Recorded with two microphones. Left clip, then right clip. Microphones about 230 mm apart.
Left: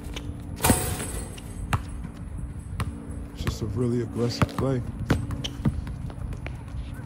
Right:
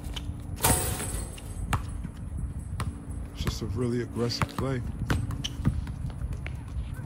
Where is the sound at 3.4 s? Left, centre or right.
Centre.